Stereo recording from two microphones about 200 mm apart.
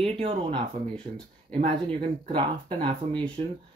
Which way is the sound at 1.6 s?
25° right (ahead or behind).